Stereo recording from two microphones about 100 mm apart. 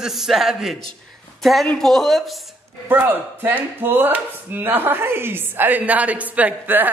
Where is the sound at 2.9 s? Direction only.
20° right (ahead or behind).